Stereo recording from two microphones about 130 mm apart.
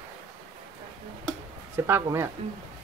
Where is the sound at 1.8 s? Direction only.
15° right (ahead or behind).